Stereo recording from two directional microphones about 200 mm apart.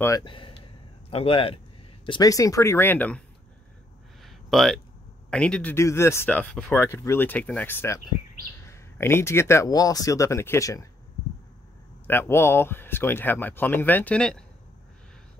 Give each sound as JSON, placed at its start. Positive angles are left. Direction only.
{"t": 0.0, "sound": "speech", "side_deg": 20}
{"t": 4.2, "sound": "a sound", "side_deg": 0}
{"t": 5.3, "sound": "speech", "side_deg": 5}
{"t": 12.1, "sound": "speech", "side_deg": 10}